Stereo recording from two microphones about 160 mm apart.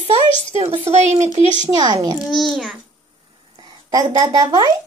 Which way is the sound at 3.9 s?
25° right (ahead or behind).